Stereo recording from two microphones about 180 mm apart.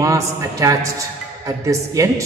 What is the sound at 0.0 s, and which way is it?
A man's voice, 15° right (ahead or behind).